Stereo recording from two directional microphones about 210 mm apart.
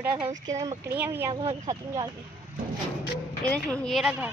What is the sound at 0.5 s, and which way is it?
Speech, 15° right (ahead or behind).